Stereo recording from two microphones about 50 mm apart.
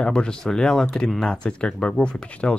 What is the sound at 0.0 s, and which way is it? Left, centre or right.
Speech, centre.